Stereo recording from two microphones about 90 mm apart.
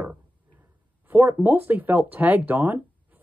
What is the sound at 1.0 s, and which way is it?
Speech, 20° right (ahead or behind).